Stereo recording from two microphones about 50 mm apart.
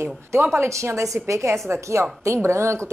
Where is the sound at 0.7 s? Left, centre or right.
Right.